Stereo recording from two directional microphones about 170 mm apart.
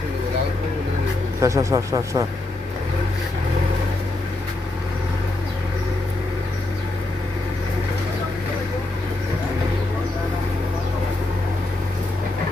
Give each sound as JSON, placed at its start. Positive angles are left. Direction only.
{"t": 1.4, "sound": "speech", "side_deg": -20}